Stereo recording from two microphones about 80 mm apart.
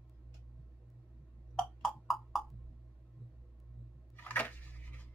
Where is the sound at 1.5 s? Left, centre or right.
Centre.